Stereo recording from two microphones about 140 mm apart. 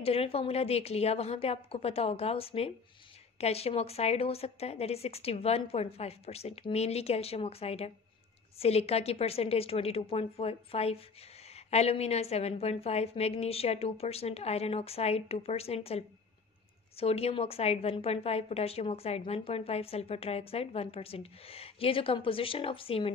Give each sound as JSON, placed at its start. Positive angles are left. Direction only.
{"t": 0.0, "sound": "a woman's voice", "side_deg": 45}